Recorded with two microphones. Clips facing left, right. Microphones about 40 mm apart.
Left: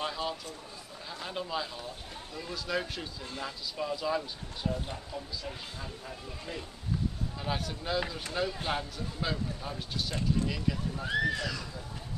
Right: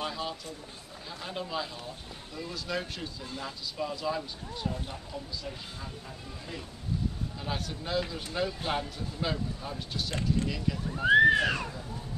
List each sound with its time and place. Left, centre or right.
0.0 s speech: centre
11.0 s speech: right